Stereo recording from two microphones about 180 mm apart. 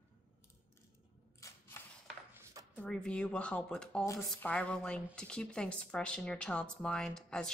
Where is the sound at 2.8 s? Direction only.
5° left (ahead or behind).